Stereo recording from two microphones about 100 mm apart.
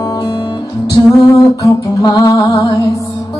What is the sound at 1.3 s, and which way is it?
Music, 35° left (ahead or behind).